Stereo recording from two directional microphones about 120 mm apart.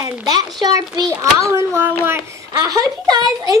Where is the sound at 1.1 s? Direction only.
20° right (ahead or behind).